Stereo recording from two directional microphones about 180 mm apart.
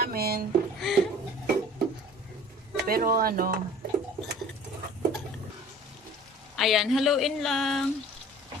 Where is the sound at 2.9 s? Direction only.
55° right (ahead or behind).